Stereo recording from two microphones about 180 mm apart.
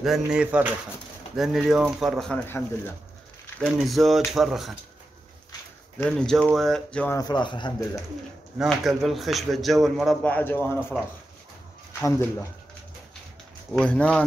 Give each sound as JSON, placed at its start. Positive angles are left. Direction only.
{"t": 0.0, "sound": "a man's voice", "side_deg": -5}
{"t": 3.6, "sound": "a man's voice", "side_deg": 0}
{"t": 5.9, "sound": "a man's voice", "side_deg": 5}
{"t": 7.2, "sound": "speech", "side_deg": 25}
{"t": 8.5, "sound": "a man's voice", "side_deg": 0}
{"t": 10.9, "sound": "a man's voice", "side_deg": -5}
{"t": 12.0, "sound": "speech", "side_deg": 10}
{"t": 13.7, "sound": "a man's voice", "side_deg": 5}